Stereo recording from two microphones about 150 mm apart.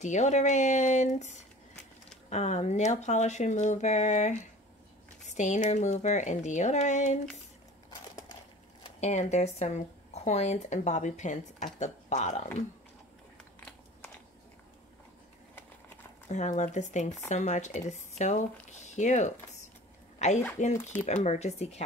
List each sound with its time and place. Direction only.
0.0 s speech: 50° left (ahead or behind)
9.0 s speech: 50° left (ahead or behind)
16.3 s speech: 50° left (ahead or behind)